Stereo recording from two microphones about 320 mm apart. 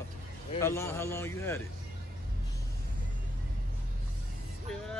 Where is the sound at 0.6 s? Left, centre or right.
Centre.